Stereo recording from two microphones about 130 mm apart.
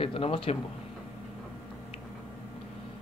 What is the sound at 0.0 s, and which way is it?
Speech, 45° left (ahead or behind).